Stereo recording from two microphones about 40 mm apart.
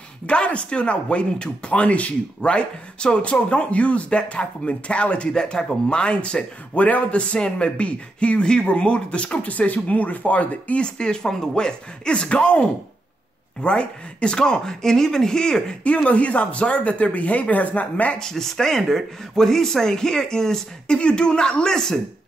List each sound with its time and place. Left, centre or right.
0.3 s a man's voice: left
5.3 s a man's voice: centre; by 10.8 s left
10.8 s a man's voice: left
15.8 s speech: left
18.2 s a man's voice: centre